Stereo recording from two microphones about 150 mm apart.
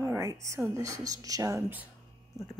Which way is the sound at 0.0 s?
20° right (ahead or behind).